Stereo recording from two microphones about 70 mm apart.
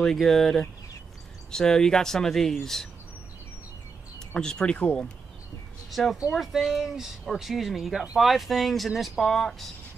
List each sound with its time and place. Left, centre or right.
0.0 s speech: centre
4.3 s speech: centre
5.9 s speech: centre